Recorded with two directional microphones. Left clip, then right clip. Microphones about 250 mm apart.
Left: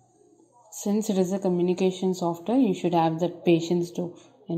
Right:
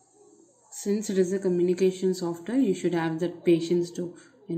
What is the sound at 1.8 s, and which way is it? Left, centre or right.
A woman's voice, centre.